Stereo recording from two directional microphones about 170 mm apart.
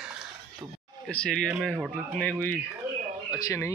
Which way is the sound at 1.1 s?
5° left (ahead or behind).